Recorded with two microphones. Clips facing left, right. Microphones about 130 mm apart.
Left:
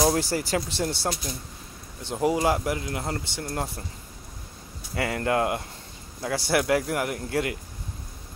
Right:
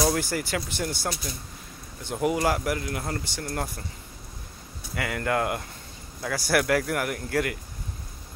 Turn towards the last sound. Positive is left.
turn(degrees=25)  # may be behind; listen again after turning